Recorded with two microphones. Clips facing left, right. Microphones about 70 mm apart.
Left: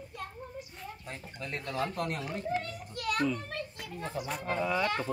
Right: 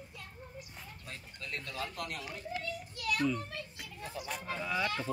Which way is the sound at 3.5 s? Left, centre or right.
Left.